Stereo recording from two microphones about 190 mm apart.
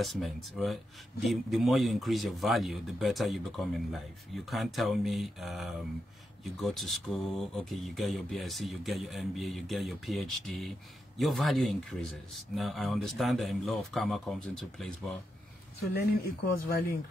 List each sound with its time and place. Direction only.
0.0 s speech: centre (ahead or behind)
16.5 s speech: 50° left (ahead or behind)